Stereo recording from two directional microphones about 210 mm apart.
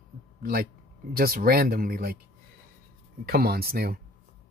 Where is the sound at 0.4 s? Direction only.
45° right (ahead or behind).